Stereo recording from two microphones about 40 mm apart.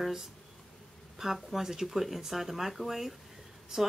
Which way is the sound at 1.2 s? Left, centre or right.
Centre.